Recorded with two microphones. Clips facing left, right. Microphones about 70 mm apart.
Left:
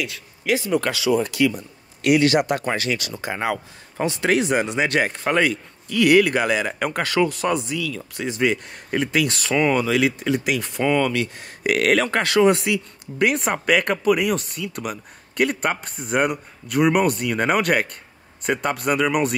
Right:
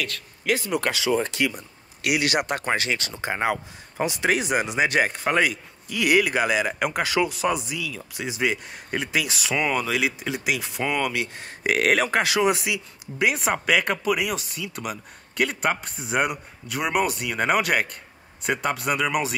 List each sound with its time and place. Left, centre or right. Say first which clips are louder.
0.0 s speech: left 2 dB; centre
0.9 s speech: left 3 dB; right
2.0 s speech: left 7 dB; centre
2.4 s speech: left 2 dB; right
4.0 s speech: left 3 dB; centre